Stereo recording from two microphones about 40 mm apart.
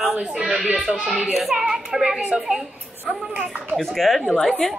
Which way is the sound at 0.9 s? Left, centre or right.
Right.